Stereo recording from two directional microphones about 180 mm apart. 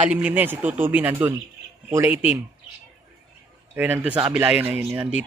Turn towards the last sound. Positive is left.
turn(degrees=-15)  # may be behind; listen again after turning